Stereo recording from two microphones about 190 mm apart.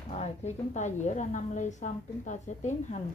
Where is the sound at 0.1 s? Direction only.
35° left (ahead or behind).